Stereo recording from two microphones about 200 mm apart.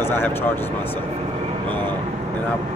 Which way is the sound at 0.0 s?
10° left (ahead or behind).